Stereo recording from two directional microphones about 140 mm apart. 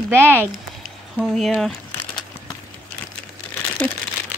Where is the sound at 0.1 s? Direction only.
15° right (ahead or behind).